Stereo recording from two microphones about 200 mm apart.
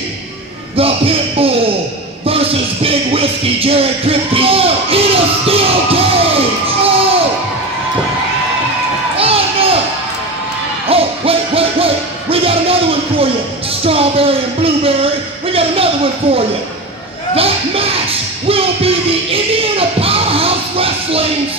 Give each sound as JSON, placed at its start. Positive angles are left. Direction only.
{"t": 0.7, "sound": "a sound", "side_deg": -30}
{"t": 2.2, "sound": "music", "side_deg": -30}
{"t": 9.1, "sound": "crowd", "side_deg": -30}
{"t": 10.9, "sound": "hoot", "side_deg": -30}
{"t": 13.8, "sound": "a sound", "side_deg": -30}
{"t": 18.5, "sound": "music", "side_deg": -30}